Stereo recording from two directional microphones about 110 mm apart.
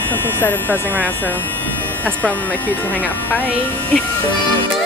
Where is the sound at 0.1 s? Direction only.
20° left (ahead or behind).